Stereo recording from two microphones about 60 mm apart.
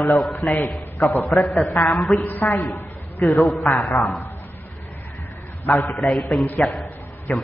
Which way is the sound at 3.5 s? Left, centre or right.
Centre.